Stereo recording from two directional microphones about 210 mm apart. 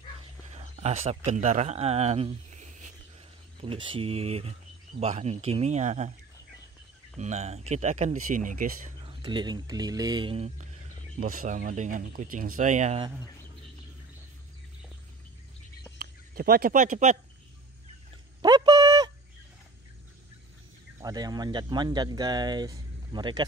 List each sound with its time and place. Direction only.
0.5 s speech: 30° right (ahead or behind)
7.2 s speech: 30° right (ahead or behind)
9.0 s speech: 20° right (ahead or behind)
16.0 s speech: 45° right (ahead or behind)
18.4 s a sound: 20° right (ahead or behind)
21.0 s speech: 20° right (ahead or behind)